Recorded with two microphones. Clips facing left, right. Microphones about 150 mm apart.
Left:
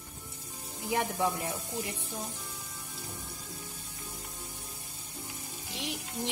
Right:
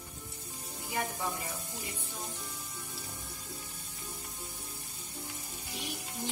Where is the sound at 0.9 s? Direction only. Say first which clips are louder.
Left 6 dB; 75° left (ahead or behind).